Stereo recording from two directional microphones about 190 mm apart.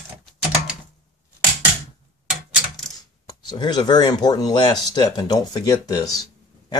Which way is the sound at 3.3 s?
25° left (ahead or behind).